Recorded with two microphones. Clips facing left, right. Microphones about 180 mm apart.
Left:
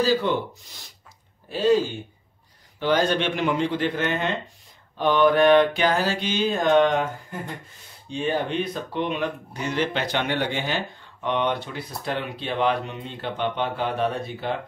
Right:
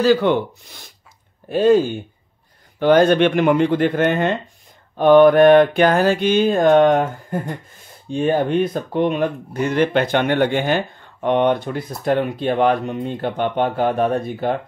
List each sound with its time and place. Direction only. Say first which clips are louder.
0.0 s speech: right 6 dB; 65° right (ahead or behind)
1.5 s speech: right 6 dB; 55° right (ahead or behind)